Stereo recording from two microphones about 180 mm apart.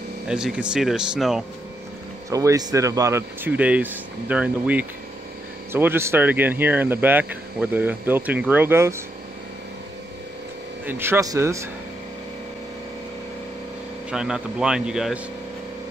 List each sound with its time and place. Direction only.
0.3 s speech: 5° right (ahead or behind)
2.2 s speech: 20° right (ahead or behind)
10.9 s speech: 15° right (ahead or behind)
14.1 s speech: 5° right (ahead or behind)